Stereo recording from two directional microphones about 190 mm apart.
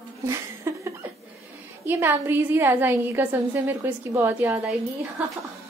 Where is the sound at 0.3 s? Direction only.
15° right (ahead or behind).